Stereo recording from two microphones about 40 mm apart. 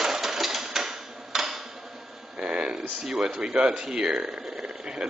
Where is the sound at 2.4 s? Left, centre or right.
Right.